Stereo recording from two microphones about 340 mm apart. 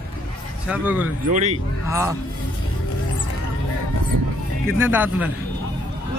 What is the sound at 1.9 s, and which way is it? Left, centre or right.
Speech, centre.